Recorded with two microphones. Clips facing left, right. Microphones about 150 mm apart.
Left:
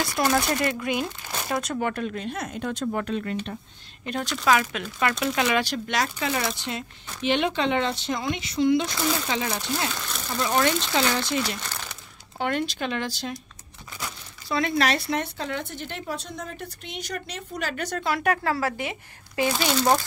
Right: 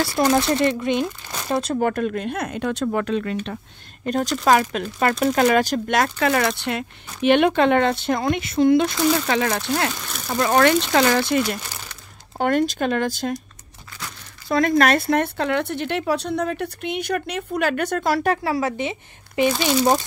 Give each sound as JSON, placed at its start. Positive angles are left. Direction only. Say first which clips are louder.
{"t": 0.2, "sound": "a woman's voice", "louder": "right 5 dB", "side_deg": -25}
{"t": 1.9, "sound": "speech", "louder": "right 6 dB", "side_deg": -50}
{"t": 4.0, "sound": "speech", "louder": "right 6 dB", "side_deg": -40}
{"t": 12.4, "sound": "speech", "louder": "right 7 dB", "side_deg": -45}
{"t": 14.5, "sound": "speech", "louder": "right 6 dB", "side_deg": -50}
{"t": 18.1, "sound": "speech", "louder": "right 2 dB", "side_deg": -30}
{"t": 18.4, "sound": "a woman's voice", "louder": "right 4 dB", "side_deg": -15}